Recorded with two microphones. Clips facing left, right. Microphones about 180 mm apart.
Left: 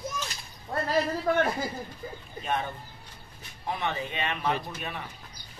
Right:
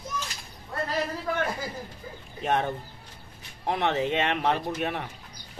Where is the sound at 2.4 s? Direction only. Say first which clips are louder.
Right 5 dB; 70° right (ahead or behind).